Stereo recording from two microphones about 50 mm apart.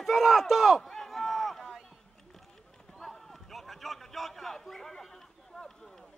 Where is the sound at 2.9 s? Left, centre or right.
Centre.